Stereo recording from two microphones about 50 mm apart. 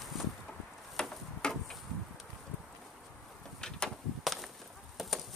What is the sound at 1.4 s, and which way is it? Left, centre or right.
Chop, centre.